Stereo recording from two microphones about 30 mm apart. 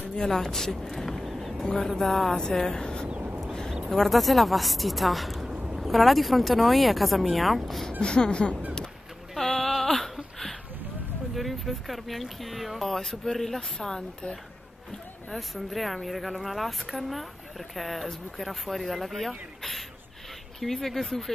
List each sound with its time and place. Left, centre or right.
0.3 s speech: centre
1.2 s a sound: centre
1.8 s speech: centre
2.3 s speech: centre
3.9 s speech: centre
5.5 s a sound: right
5.8 s speech: centre
8.0 s speech: left
9.3 s a sound: centre
11.3 s speech: centre
15.3 s speech: centre